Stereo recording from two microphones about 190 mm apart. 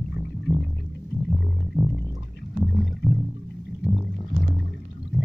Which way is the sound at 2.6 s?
Centre (ahead or behind).